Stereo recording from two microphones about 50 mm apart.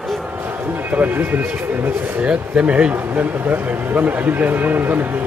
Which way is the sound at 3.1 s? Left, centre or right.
Right.